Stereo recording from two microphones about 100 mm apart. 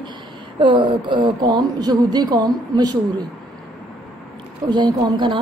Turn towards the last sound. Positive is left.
turn(degrees=-50)  # may be behind; listen again after turning